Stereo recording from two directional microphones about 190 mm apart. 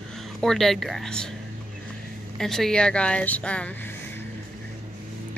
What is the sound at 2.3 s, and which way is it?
Speech, centre (ahead or behind).